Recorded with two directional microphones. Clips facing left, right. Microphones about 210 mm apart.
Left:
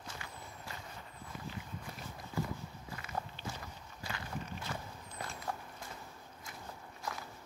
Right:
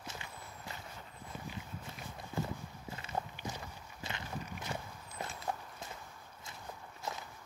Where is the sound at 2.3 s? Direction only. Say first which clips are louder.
Even; 25° right (ahead or behind).